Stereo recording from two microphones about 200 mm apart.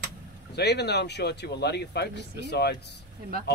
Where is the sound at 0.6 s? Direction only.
55° left (ahead or behind).